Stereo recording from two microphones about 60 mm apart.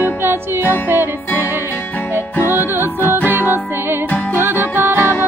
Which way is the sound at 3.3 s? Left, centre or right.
Right.